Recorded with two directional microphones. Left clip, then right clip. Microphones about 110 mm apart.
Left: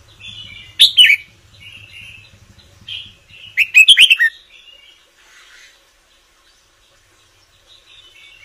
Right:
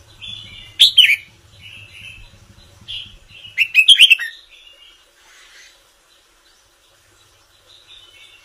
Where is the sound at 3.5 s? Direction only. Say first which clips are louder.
Left 2 dB; 35° left (ahead or behind).